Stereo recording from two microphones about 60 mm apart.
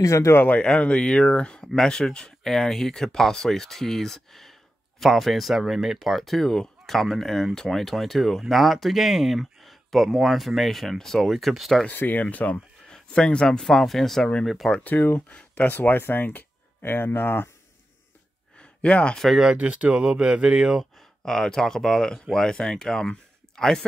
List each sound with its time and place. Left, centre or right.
0.0 s speech: left
0.6 s speech: centre
11.9 s speech: left
12.9 s speech: centre
14.7 s speech: left
18.6 s a sound: left
19.5 s speech: right
21.2 s speech: centre